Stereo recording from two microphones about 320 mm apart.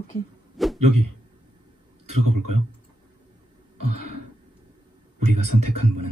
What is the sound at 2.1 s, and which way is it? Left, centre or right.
Speech, right.